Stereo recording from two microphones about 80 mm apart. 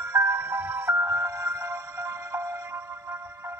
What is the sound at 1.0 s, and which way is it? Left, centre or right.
Music, right.